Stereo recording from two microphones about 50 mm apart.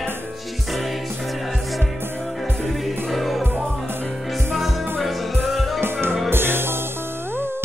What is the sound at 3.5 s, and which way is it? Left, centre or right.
Music, centre.